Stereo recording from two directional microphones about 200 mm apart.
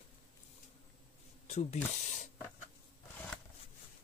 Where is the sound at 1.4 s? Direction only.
35° left (ahead or behind).